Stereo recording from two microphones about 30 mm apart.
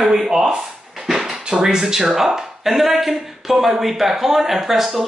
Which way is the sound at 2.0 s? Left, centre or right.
Centre.